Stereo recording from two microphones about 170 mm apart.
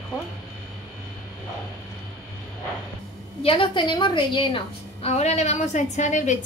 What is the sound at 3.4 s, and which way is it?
A woman's voice, 30° left (ahead or behind).